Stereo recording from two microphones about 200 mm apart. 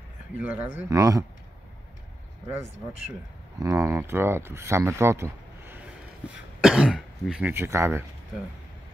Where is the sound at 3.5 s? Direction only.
15° right (ahead or behind).